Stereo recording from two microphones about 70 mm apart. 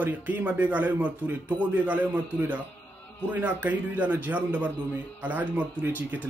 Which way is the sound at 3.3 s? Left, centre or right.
Right.